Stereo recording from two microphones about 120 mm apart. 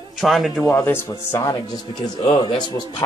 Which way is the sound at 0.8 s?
20° left (ahead or behind).